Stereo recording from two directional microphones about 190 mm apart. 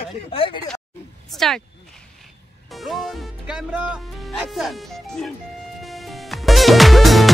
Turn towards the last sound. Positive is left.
turn(degrees=0)  # may be behind; listen again after turning